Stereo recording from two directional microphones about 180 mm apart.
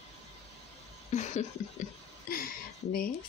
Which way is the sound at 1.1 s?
40° left (ahead or behind).